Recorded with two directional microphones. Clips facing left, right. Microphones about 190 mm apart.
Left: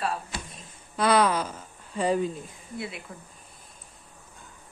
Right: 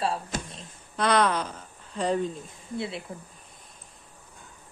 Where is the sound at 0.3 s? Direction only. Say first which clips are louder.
Right 5 dB; 45° right (ahead or behind).